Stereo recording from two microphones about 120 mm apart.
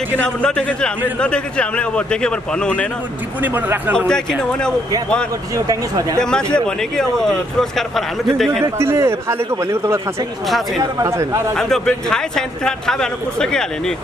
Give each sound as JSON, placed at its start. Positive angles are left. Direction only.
{"t": 0.4, "sound": "speech", "side_deg": 10}
{"t": 3.5, "sound": "speech", "side_deg": -15}
{"t": 4.1, "sound": "speech", "side_deg": 5}
{"t": 6.1, "sound": "a man's voice", "side_deg": 5}
{"t": 8.6, "sound": "a man's voice", "side_deg": -25}
{"t": 11.5, "sound": "a man's voice", "side_deg": 5}